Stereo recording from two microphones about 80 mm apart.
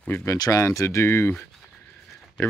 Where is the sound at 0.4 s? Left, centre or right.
Left.